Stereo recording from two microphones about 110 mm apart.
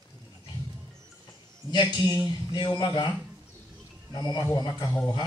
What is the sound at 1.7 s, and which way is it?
A man's voice, 40° left (ahead or behind).